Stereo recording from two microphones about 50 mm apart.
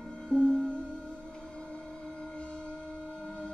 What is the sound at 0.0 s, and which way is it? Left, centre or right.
Music, centre.